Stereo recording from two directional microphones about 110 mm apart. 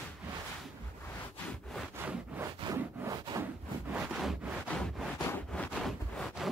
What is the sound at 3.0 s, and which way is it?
Wood, 35° right (ahead or behind).